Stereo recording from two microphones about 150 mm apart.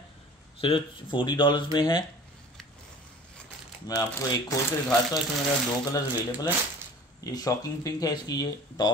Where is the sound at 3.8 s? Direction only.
25° left (ahead or behind).